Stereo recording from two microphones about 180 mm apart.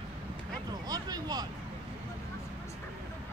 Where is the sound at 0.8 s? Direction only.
20° right (ahead or behind).